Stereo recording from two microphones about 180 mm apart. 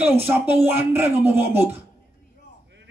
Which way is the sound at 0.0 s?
10° right (ahead or behind).